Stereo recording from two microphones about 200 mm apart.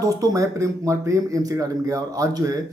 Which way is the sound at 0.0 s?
15° right (ahead or behind).